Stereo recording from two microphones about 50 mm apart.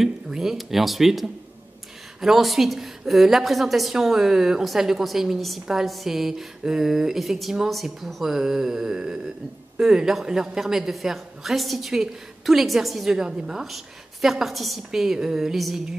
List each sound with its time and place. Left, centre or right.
0.0 s a woman's voice: centre